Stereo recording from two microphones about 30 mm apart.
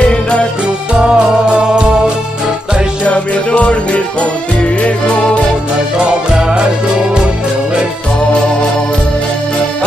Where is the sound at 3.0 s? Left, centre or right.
Left.